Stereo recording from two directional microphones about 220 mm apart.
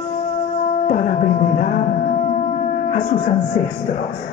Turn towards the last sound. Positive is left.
turn(degrees=35)  # may be behind; listen again after turning